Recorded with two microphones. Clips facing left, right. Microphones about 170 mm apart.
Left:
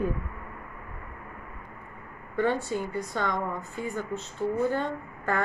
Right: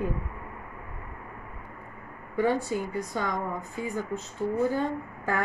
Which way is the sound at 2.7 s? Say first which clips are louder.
Even; 10° right (ahead or behind).